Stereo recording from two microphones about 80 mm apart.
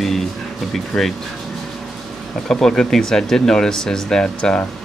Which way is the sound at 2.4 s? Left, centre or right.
Centre.